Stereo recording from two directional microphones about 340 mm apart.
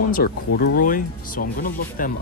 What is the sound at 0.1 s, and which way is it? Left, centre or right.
Speech, left.